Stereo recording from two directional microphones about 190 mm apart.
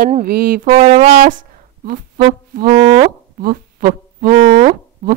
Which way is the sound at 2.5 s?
45° right (ahead or behind).